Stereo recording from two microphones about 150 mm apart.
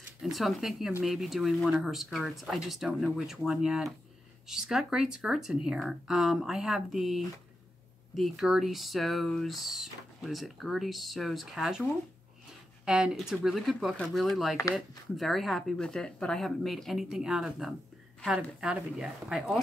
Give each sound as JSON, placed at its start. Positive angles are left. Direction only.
{"t": 0.2, "sound": "speech", "side_deg": 0}